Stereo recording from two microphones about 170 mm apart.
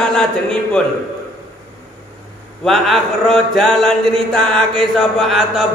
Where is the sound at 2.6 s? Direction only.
Centre (ahead or behind).